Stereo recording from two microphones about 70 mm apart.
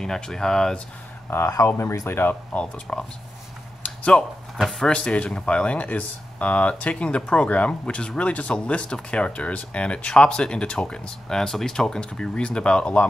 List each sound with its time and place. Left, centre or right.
0.0 s speech: centre
1.3 s speech: left
2.5 s speech: centre
3.8 s a sound: centre
4.6 s speech: centre
4.9 s speech: centre